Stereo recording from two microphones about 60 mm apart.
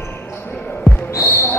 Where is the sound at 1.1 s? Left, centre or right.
Left.